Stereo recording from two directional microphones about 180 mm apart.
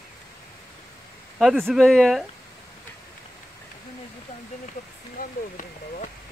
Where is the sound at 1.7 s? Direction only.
Centre (ahead or behind).